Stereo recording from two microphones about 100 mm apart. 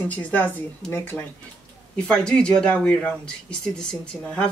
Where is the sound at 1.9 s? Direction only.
10° left (ahead or behind).